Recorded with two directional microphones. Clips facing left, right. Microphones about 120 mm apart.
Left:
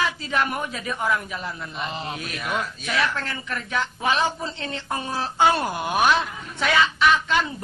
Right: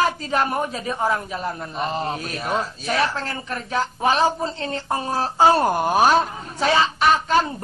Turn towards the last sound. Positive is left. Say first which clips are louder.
# right 2 dB
turn(degrees=-40)  # may be behind; listen again after turning